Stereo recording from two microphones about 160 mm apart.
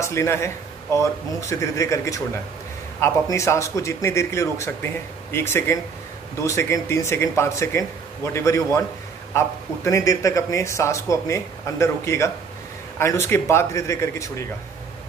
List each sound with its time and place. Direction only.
0.0 s a man's voice: 15° left (ahead or behind)